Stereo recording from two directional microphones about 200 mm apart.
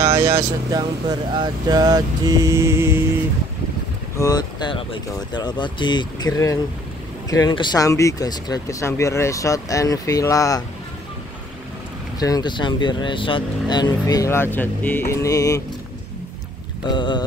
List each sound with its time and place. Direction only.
0.2 s mantra: 15° right (ahead or behind)
4.2 s speech: 20° left (ahead or behind)
12.2 s speech: 20° left (ahead or behind)
16.8 s speech: 25° left (ahead or behind)